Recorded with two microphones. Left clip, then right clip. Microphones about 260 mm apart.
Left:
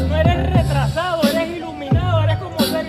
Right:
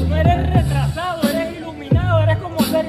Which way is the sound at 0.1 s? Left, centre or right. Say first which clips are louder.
Right 1 dB; centre.